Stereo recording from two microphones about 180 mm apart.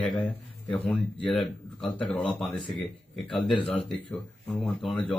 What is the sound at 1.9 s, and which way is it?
Speech, 25° left (ahead or behind).